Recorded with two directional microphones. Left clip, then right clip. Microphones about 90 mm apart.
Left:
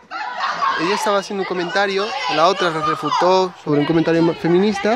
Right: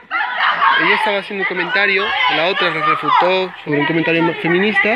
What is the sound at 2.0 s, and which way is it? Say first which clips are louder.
Speech: right 5 dB; 80° left.